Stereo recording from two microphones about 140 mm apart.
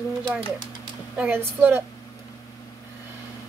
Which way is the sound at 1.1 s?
15° right (ahead or behind).